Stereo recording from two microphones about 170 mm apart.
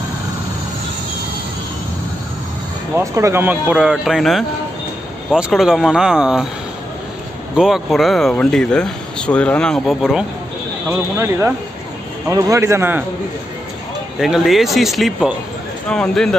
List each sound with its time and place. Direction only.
3.0 s speech: 15° right (ahead or behind)
7.5 s speech: centre (ahead or behind)
10.9 s speech: 10° right (ahead or behind)
14.2 s speech: centre (ahead or behind)